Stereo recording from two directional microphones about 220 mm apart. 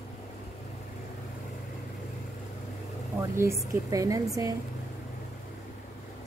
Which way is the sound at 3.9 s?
15° right (ahead or behind).